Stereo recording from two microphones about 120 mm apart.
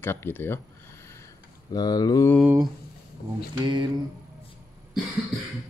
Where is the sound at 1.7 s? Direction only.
35° left (ahead or behind).